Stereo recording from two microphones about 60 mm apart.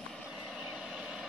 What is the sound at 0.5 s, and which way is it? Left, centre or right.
Vehicle, centre.